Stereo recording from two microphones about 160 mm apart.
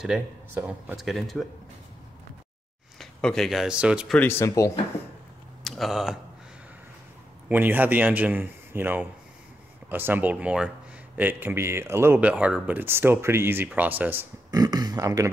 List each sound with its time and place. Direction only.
0.0 s speech: 10° right (ahead or behind)
3.0 s speech: 5° left (ahead or behind)
4.2 s speech: 15° left (ahead or behind)
5.6 s speech: centre (ahead or behind)
7.4 s speech: 10° right (ahead or behind)
14.5 s speech: 25° right (ahead or behind)